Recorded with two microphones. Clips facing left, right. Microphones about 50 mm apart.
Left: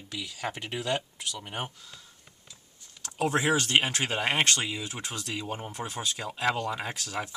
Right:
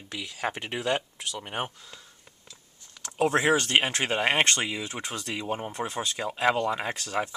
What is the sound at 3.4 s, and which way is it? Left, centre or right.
Speech, centre.